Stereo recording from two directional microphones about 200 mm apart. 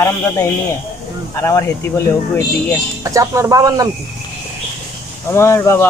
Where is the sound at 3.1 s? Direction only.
15° right (ahead or behind).